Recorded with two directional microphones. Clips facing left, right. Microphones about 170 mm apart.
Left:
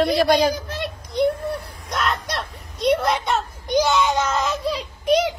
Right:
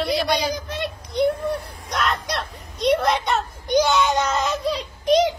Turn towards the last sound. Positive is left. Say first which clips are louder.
# right 1 dB
turn(degrees=0)  # may be behind; listen again after turning